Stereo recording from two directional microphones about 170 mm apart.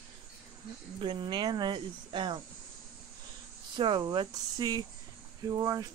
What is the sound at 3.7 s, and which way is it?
Speech, 25° right (ahead or behind).